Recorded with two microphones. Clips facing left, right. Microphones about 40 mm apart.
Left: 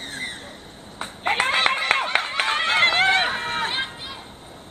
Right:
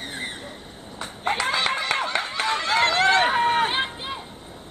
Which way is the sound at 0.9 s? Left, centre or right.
Left.